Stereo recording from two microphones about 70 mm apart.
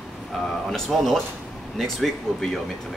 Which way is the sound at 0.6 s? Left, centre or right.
Centre.